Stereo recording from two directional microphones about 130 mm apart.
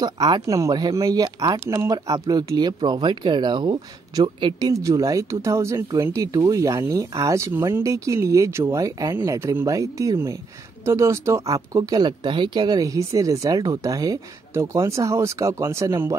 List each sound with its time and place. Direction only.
0.0 s speech: 30° right (ahead or behind)